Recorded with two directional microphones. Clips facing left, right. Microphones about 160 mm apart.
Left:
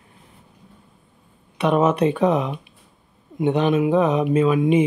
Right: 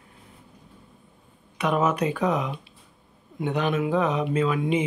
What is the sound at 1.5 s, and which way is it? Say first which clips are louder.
Speech: left 5 dB; 25° left (ahead or behind).